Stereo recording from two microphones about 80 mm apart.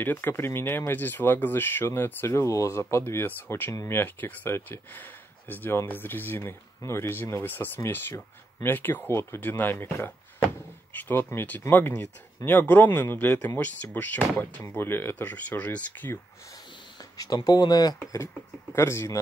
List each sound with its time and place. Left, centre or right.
0.0 s speech: left
17.2 s speech: left
17.9 s speech: left